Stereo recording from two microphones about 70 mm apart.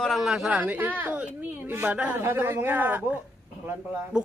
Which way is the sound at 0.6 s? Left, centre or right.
Right.